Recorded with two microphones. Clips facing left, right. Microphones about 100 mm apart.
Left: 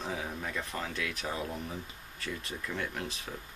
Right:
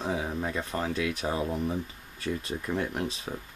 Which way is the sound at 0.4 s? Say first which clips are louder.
Right 6 dB; 25° right (ahead or behind).